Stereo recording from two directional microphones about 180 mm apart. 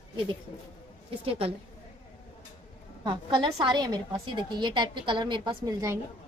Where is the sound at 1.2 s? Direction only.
30° right (ahead or behind).